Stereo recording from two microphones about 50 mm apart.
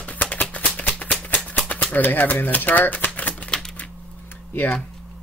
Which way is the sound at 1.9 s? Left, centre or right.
Left.